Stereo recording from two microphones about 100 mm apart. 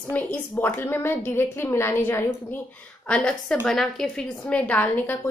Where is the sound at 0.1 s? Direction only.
20° left (ahead or behind).